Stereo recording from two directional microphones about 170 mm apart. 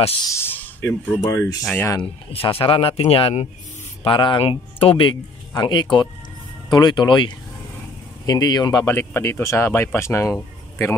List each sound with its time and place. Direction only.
0.3 s speech: 15° left (ahead or behind)
1.2 s speech: 20° left (ahead or behind)
1.6 s speech: 5° left (ahead or behind)
1.9 s speech: 30° left (ahead or behind)